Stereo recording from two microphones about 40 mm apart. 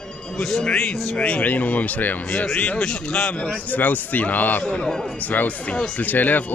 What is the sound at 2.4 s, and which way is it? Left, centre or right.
Speech, left.